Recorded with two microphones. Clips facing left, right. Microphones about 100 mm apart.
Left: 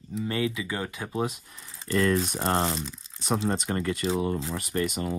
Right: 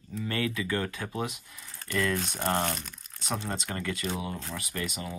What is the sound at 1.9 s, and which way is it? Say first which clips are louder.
Speech: left 5 dB; 30° left (ahead or behind).